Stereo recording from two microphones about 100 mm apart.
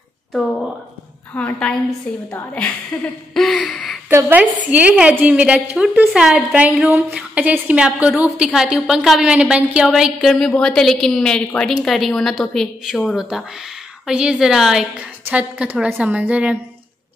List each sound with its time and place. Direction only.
0.3 s a woman's voice: 5° left (ahead or behind)
1.3 s a woman's voice: 15° left (ahead or behind)
3.3 s a sound: centre (ahead or behind)
4.3 s a woman's voice: 15° right (ahead or behind)